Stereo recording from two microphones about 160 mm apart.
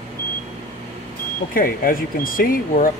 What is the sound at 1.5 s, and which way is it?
Speech, 60° left (ahead or behind).